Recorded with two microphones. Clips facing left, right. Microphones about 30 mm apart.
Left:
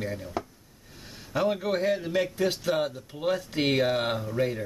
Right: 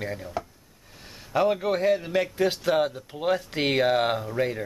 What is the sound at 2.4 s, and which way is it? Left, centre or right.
Speech, right.